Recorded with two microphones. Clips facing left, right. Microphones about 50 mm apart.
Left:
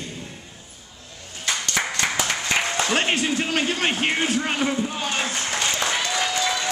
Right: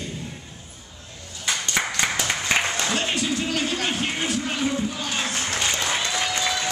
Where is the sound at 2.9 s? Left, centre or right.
Left.